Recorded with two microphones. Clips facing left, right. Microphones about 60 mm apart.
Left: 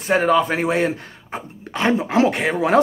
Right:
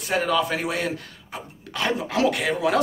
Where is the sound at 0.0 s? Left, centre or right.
Left.